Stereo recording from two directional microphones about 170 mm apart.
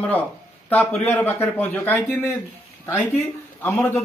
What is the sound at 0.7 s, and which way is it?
A man's voice, 10° left (ahead or behind).